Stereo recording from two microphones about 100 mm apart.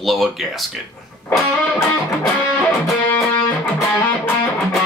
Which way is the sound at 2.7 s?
25° left (ahead or behind).